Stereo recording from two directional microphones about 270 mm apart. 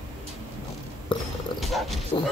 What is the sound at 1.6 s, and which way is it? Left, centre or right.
Dog, centre.